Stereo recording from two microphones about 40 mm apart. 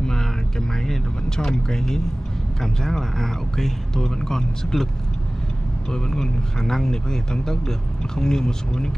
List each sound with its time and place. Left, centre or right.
0.0 s a sound: centre
2.6 s speech: centre
5.9 s speech: centre